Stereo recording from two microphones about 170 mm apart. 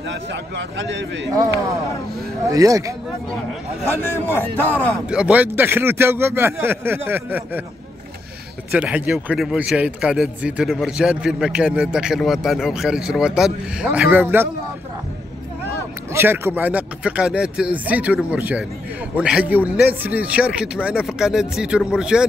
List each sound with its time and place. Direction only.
0.1 s a man's voice: 90° right
2.4 s speech: 20° right (ahead or behind)
4.3 s a man's voice: 10° left (ahead or behind)
5.0 s a man's voice: 5° right (ahead or behind)
8.7 s speech: 10° right (ahead or behind)
16.1 s a man's voice: 15° right (ahead or behind)